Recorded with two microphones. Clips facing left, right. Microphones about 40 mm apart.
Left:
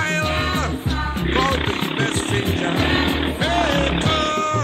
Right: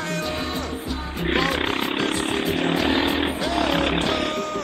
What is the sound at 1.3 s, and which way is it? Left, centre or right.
Wild animals, left.